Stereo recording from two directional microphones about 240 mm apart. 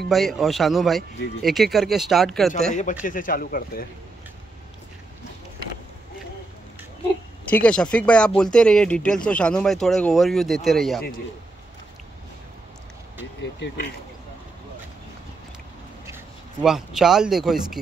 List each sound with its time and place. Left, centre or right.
0.1 s speech: centre
2.7 s a man's voice: left
7.4 s speech: centre
13.4 s speech: left
16.6 s speech: centre